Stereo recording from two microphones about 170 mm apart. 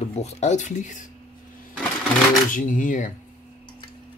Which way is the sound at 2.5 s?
50° left (ahead or behind).